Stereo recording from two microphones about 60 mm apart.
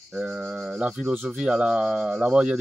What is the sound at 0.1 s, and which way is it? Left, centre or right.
Rub, centre.